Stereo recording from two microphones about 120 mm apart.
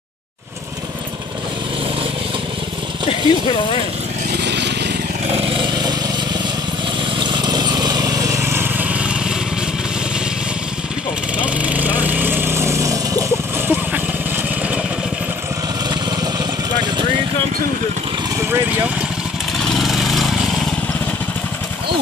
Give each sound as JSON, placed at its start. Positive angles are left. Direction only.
{"t": 3.1, "sound": "speech", "side_deg": 50}
{"t": 5.3, "sound": "vehicle", "side_deg": -50}
{"t": 7.2, "sound": "lawn mower", "side_deg": -40}
{"t": 11.3, "sound": "vehicle", "side_deg": -10}
{"t": 18.4, "sound": "vehicle", "side_deg": -20}
{"t": 19.6, "sound": "lawn mower", "side_deg": 0}